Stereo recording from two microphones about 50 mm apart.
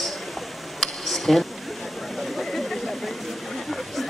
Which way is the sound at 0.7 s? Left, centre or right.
Centre.